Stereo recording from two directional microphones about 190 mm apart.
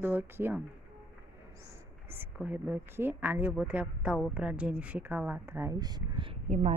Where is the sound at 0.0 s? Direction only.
10° right (ahead or behind).